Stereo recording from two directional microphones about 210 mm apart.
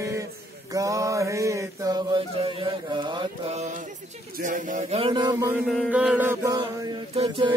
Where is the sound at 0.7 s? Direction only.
15° right (ahead or behind).